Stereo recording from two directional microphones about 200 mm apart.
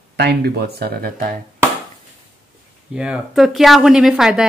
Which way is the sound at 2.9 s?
5° right (ahead or behind).